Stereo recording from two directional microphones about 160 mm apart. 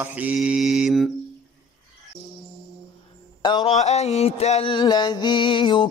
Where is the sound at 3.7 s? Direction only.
45° left (ahead or behind).